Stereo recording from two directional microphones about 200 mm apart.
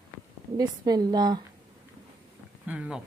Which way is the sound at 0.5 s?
20° right (ahead or behind).